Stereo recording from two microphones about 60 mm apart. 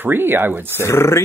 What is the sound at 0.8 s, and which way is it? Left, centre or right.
Speech, left.